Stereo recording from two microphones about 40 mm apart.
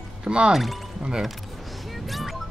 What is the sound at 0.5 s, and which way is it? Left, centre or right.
Speech, centre.